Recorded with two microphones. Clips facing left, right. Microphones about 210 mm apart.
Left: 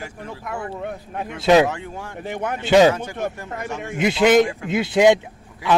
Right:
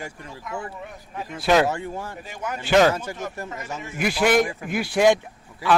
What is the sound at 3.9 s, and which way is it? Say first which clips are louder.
A man's voice: left 5 dB; 20° left (ahead or behind).